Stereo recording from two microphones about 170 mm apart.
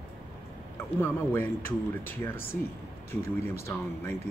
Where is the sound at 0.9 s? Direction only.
10° left (ahead or behind).